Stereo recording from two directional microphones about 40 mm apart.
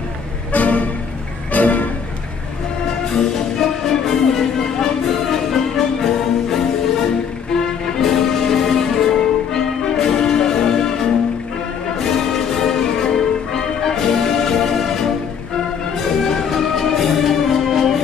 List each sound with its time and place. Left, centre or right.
0.5 s music: left
3.1 s music: centre
8.0 s music: centre
16.4 s music: centre